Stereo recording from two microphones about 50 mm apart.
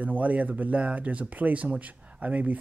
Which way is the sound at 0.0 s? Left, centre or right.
Right.